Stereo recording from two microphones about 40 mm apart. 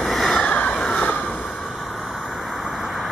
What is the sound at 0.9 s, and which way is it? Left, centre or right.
Vehicle, left.